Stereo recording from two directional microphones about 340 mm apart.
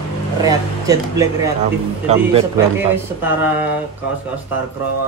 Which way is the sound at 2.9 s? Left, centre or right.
Centre.